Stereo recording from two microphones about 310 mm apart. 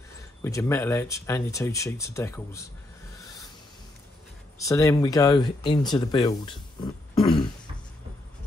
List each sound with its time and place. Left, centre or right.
0.4 s speech: centre
4.6 s speech: centre